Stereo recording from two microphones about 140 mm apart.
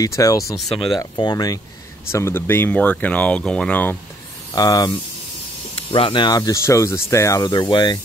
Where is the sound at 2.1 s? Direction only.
15° left (ahead or behind).